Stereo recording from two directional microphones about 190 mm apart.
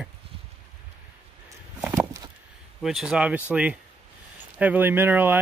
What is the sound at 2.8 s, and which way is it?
Speech, centre (ahead or behind).